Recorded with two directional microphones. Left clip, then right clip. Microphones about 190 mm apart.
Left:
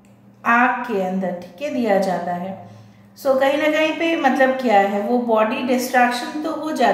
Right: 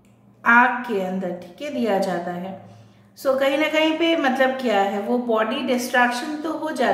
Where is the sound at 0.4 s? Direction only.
15° right (ahead or behind).